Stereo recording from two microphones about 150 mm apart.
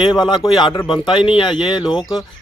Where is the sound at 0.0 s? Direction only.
30° left (ahead or behind).